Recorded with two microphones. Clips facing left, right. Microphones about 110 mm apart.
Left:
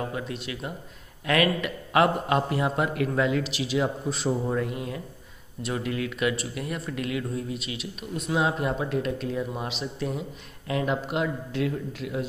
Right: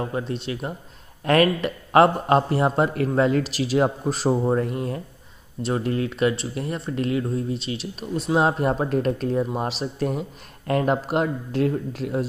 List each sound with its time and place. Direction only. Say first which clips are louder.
0.0 s speech: right 5 dB; 35° right (ahead or behind)
8.4 s speech: right 5 dB; 45° right (ahead or behind)